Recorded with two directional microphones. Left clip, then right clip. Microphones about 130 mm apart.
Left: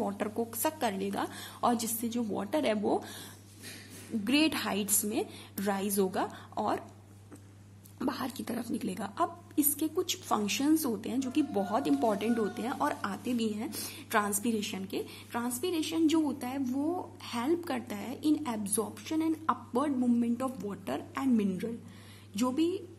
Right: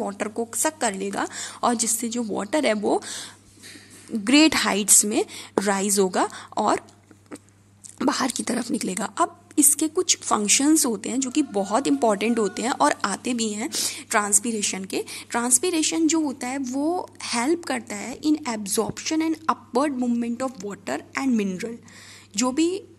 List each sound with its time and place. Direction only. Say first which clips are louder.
0.0 s a woman's voice: right 6 dB; 15° right (ahead or behind)
8.0 s a woman's voice: right 11 dB; 30° right (ahead or behind)
14.0 s a woman's voice: right 6 dB; 20° right (ahead or behind); by 20.2 s 40° right (ahead or behind)
20.2 s a woman's voice: right 6 dB; 25° right (ahead or behind)